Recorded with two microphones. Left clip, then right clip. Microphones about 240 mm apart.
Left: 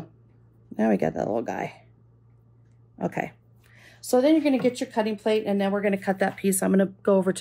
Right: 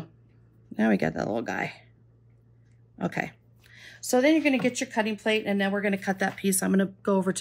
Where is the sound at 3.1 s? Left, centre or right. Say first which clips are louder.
Left 1 dB; centre.